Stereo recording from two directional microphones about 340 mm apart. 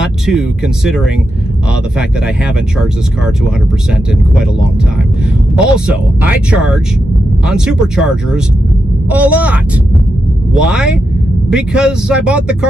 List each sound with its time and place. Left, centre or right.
0.0 s speech: centre
5.6 s speech: centre